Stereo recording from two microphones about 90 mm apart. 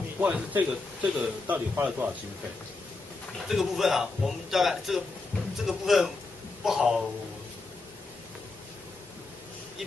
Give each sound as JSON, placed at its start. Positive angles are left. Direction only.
{"t": 0.2, "sound": "a man's voice", "side_deg": -20}
{"t": 3.4, "sound": "a man's voice", "side_deg": -5}